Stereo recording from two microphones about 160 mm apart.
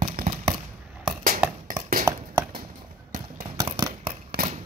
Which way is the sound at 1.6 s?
60° right (ahead or behind).